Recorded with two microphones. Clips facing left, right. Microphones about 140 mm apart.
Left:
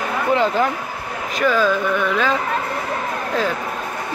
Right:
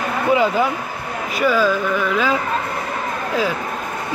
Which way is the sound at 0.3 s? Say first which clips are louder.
Right 1 dB; 10° right (ahead or behind).